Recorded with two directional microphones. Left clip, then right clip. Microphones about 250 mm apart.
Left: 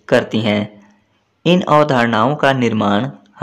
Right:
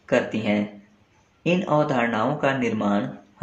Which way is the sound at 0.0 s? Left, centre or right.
Left.